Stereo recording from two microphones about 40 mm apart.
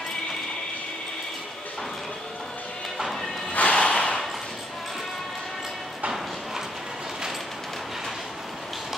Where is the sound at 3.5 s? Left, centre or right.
Left.